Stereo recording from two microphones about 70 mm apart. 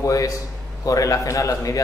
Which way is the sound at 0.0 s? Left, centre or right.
Left.